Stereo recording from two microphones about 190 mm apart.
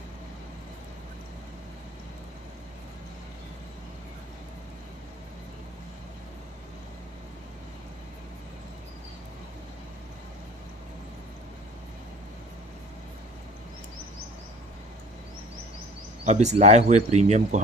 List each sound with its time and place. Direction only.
16.3 s speech: 35° right (ahead or behind)